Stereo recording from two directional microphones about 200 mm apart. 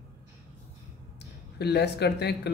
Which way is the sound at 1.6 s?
55° left (ahead or behind).